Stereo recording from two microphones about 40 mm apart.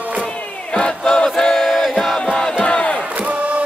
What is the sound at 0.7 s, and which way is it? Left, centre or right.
Battle cry, left.